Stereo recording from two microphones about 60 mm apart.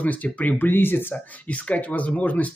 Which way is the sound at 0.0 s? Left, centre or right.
Left.